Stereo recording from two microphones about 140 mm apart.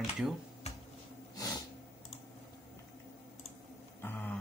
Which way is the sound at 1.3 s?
25° left (ahead or behind).